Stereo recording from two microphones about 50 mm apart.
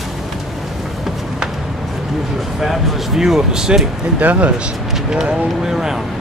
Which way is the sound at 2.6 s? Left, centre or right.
Centre.